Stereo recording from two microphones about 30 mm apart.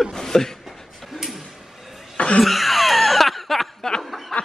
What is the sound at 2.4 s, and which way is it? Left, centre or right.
Snicker, centre.